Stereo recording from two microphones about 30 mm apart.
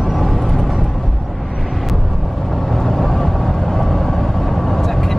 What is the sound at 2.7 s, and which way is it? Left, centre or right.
Vehicle, centre.